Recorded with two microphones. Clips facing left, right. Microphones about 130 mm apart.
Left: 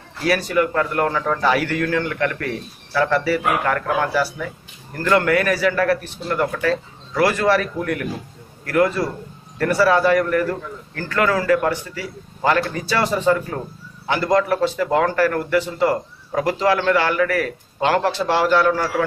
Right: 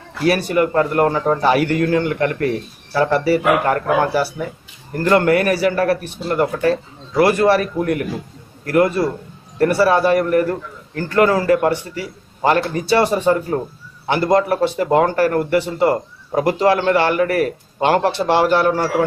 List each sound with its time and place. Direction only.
0.4 s a man's voice: 30° right (ahead or behind)